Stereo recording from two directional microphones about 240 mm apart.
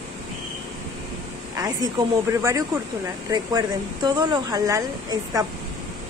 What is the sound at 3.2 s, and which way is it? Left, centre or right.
Speech, centre.